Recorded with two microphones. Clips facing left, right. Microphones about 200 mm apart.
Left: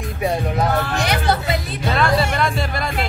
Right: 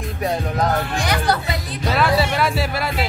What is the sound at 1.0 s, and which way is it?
Music, 25° left (ahead or behind).